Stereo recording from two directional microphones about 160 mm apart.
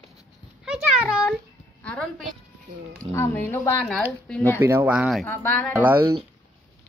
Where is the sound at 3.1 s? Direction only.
15° left (ahead or behind).